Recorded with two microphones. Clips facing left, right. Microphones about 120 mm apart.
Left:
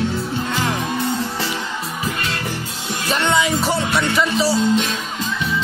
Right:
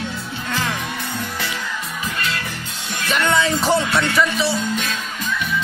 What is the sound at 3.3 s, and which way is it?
Speech, 15° left (ahead or behind).